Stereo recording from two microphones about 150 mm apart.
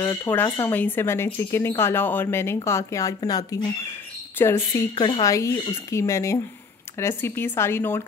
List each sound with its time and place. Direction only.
0.0 s a woman's voice: 25° left (ahead or behind)
4.4 s a woman's voice: 15° left (ahead or behind)
4.9 s a woman's voice: 30° left (ahead or behind)